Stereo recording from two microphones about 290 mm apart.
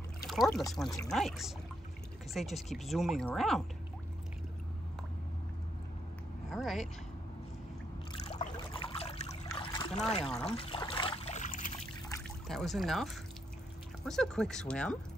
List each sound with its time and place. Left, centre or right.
0.3 s speech: centre
0.8 s speech: centre
1.1 s speech: centre
6.5 s speech: centre
8.1 s trickle: centre
9.5 s a sound: centre
10.2 s speech: centre
10.6 s trickle: centre
12.1 s speech: centre